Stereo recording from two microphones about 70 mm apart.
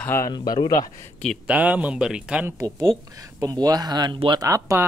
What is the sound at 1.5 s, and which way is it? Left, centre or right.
Speech, centre.